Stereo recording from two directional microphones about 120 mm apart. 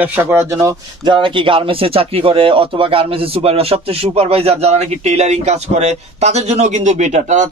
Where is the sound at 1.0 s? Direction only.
40° right (ahead or behind).